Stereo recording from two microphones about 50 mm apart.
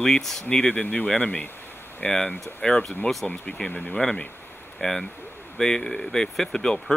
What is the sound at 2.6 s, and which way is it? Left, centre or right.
Speech, centre.